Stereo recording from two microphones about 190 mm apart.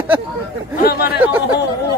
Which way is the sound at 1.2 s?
10° right (ahead or behind).